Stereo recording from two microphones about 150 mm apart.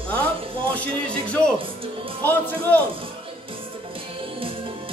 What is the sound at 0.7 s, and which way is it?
Speech, 10° left (ahead or behind).